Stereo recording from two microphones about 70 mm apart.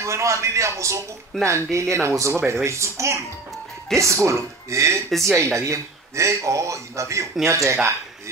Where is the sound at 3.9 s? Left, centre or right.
Centre.